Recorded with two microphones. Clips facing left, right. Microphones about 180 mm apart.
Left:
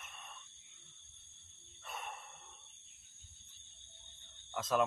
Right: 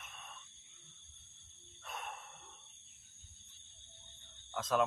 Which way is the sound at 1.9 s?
Centre (ahead or behind).